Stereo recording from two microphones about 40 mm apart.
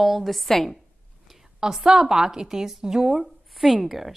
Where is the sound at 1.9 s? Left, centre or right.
Centre.